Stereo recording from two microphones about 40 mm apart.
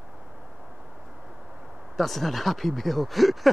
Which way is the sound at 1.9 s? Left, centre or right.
Centre.